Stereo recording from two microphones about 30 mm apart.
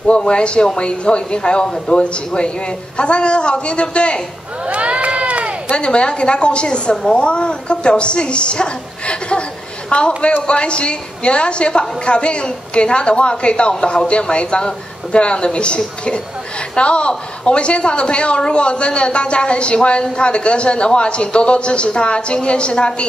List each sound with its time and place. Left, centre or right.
0.2 s a man's voice: left
4.6 s run: right
5.8 s a man's voice: left